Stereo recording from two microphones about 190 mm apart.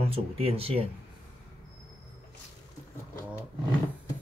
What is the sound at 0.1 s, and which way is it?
Speech, 30° right (ahead or behind).